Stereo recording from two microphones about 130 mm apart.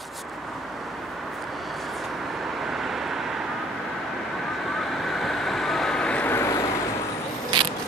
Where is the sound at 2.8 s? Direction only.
Centre (ahead or behind).